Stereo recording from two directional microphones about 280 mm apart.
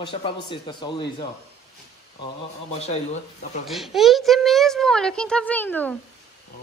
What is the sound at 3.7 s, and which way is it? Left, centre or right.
Speech, centre.